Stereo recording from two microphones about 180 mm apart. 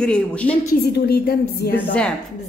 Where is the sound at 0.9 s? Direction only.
60° left (ahead or behind).